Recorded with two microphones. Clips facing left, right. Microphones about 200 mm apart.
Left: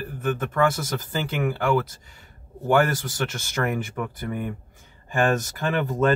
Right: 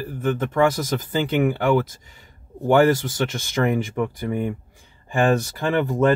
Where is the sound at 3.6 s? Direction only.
20° right (ahead or behind).